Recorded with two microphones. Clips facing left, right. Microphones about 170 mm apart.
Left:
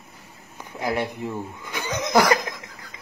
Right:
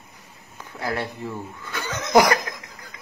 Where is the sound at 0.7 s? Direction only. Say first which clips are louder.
Left 2 dB; 15° left (ahead or behind).